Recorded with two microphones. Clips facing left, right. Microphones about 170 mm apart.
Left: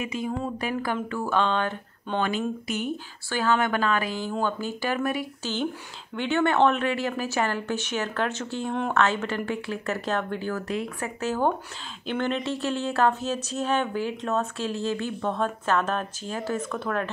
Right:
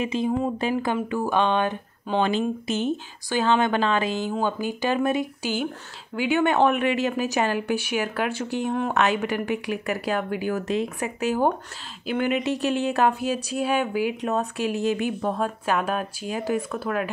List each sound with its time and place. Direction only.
0.0 s speech: 25° right (ahead or behind)
2.2 s speech: 25° right (ahead or behind); by 17.1 s 5° right (ahead or behind)